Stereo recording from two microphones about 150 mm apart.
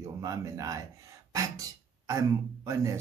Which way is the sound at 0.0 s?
20° right (ahead or behind).